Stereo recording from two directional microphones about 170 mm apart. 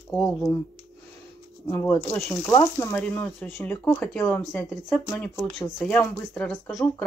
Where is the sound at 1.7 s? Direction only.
15° left (ahead or behind).